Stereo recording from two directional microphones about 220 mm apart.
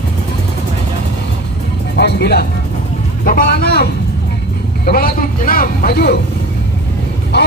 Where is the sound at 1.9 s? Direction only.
45° left (ahead or behind).